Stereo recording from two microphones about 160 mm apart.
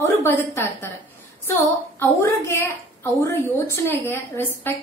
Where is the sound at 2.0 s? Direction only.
15° left (ahead or behind).